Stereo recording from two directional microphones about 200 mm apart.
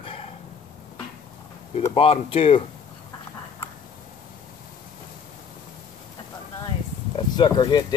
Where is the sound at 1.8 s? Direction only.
25° left (ahead or behind).